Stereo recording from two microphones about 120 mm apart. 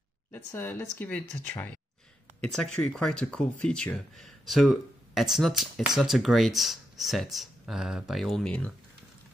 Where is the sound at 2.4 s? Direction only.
5° left (ahead or behind).